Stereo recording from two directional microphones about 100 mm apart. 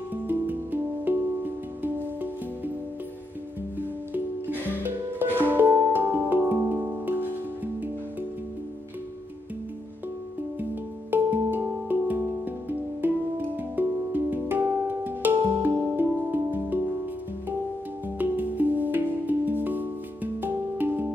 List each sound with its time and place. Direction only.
0.1 s music: 20° right (ahead or behind)
4.1 s music: 20° right (ahead or behind)
10.6 s music: 20° right (ahead or behind)
18.1 s music: 15° right (ahead or behind)